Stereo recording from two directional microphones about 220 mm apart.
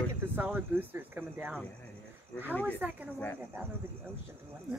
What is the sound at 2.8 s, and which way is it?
Speech, 5° right (ahead or behind).